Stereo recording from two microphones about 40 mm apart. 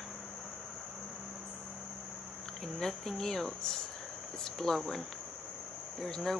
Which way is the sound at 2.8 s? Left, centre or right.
Centre.